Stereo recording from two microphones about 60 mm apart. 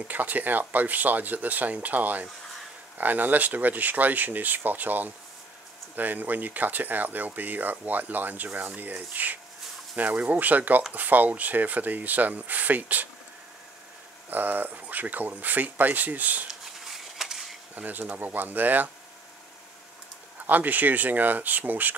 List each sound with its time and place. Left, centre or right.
0.1 s speech: right
14.3 s speech: right
16.4 s a sound: centre
17.7 s speech: right
20.4 s speech: right